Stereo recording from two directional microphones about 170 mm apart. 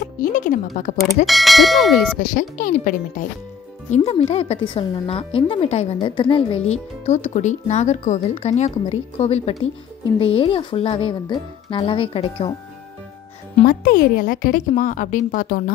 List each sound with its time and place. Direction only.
0.2 s speech: 50° left (ahead or behind)
1.0 s speech: centre (ahead or behind)
2.1 s speech: 50° left (ahead or behind)
3.9 s speech: 35° left (ahead or behind)
13.7 s speech: 60° left (ahead or behind)